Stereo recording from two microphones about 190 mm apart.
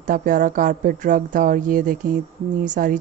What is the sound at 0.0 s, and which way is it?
A woman's voice, 45° right (ahead or behind).